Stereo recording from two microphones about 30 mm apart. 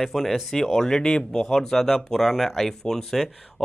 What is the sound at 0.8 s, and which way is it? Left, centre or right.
Speech, left.